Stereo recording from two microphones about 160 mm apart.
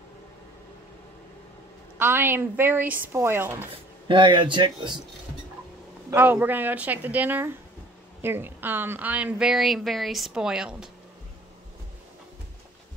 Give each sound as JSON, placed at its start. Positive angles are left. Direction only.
{"t": 2.0, "sound": "speech", "side_deg": -15}
{"t": 4.1, "sound": "speech", "side_deg": -30}
{"t": 6.0, "sound": "a woman's voice", "side_deg": -15}